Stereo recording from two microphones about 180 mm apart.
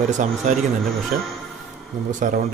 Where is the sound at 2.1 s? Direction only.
50° right (ahead or behind).